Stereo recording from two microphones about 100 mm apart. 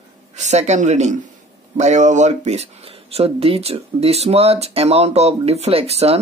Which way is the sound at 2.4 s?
90° right.